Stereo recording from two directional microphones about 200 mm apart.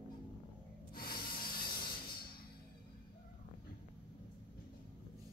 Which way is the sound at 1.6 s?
50° left (ahead or behind).